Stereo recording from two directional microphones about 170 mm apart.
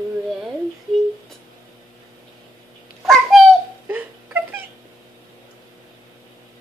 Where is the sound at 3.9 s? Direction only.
10° right (ahead or behind).